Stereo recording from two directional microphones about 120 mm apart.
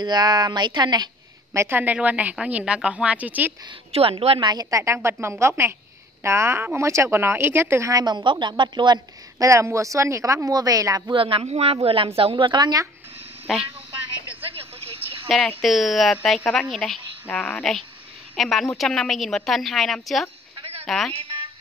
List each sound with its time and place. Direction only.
0.0 s speech: 35° right (ahead or behind)
1.5 s a woman's voice: 20° right (ahead or behind)
3.9 s a woman's voice: 55° right (ahead or behind)
4.5 s speech: 30° right (ahead or behind)
11.1 s a woman's voice: 45° right (ahead or behind)
13.5 s speech: centre (ahead or behind)
14.4 s vehicle: 55° right (ahead or behind)
15.2 s speech: centre (ahead or behind)
17.3 s a woman's voice: 15° left (ahead or behind)
18.3 s a woman's voice: centre (ahead or behind)
21.1 s a woman's voice: 50° right (ahead or behind)